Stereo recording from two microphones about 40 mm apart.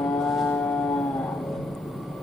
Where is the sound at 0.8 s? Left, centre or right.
Centre.